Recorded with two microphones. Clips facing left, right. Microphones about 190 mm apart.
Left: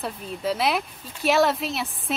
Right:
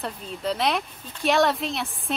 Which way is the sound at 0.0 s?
5° left (ahead or behind).